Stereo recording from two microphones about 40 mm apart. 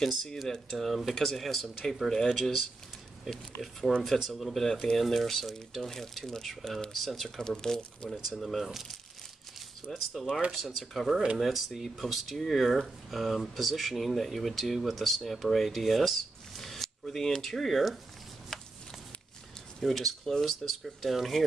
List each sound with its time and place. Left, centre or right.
0.0 s speech: centre
3.9 s speech: centre
7.3 s speech: centre
8.4 s speech: centre
9.8 s speech: centre
18.5 s a sound: centre
19.8 s speech: centre